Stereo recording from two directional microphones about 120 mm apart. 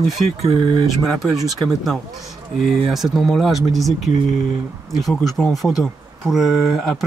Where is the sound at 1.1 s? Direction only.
Centre (ahead or behind).